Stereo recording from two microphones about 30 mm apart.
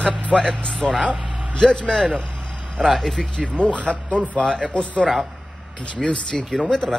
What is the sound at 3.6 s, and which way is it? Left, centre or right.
A man's voice, left.